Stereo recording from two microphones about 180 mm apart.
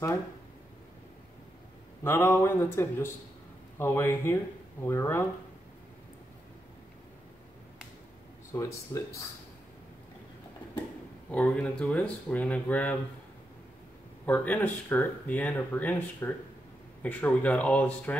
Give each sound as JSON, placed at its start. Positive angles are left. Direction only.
{"t": 2.0, "sound": "speech", "side_deg": 15}
{"t": 8.5, "sound": "speech", "side_deg": 15}
{"t": 11.2, "sound": "speech", "side_deg": 10}
{"t": 14.2, "sound": "speech", "side_deg": 10}